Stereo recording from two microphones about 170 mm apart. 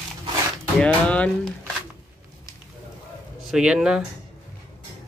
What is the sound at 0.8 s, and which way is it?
Speech, 5° left (ahead or behind).